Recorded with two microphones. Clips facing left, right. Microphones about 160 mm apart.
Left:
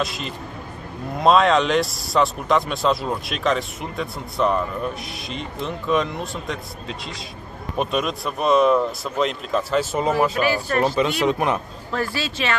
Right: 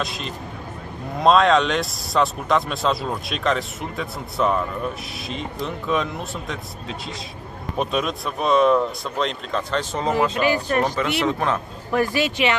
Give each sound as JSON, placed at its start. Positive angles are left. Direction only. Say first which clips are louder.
{"t": 0.0, "sound": "speech", "louder": "left 2 dB", "side_deg": 0}
{"t": 5.9, "sound": "speech", "louder": "left 3 dB", "side_deg": 0}
{"t": 10.4, "sound": "speech", "louder": "even", "side_deg": -15}
{"t": 11.0, "sound": "speech", "louder": "left 2 dB", "side_deg": 15}
{"t": 11.9, "sound": "speech", "louder": "right 5 dB", "side_deg": -15}